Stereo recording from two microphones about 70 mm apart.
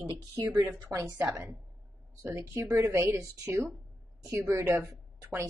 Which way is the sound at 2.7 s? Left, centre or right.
Right.